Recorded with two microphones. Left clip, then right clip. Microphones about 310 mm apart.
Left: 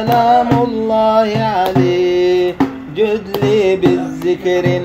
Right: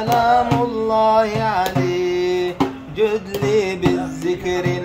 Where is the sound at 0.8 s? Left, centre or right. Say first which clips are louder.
Left 2 dB; centre.